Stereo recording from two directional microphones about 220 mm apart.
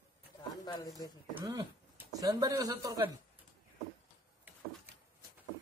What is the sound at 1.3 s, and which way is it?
Speech, 15° right (ahead or behind).